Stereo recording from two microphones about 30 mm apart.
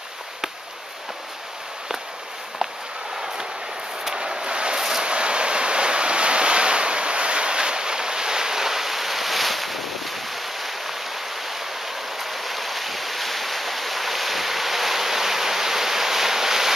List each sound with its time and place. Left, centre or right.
4.0 s vehicle: right
5.0 s waves: right; by 11.0 s centre
12.2 s stream: centre